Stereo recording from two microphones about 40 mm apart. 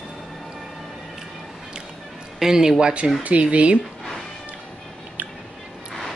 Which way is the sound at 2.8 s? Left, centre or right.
Right.